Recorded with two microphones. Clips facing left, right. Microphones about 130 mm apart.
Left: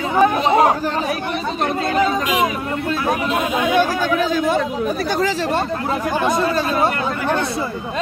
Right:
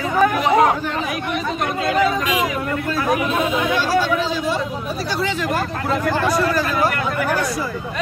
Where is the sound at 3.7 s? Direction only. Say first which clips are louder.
Left 2 dB; 50° left (ahead or behind).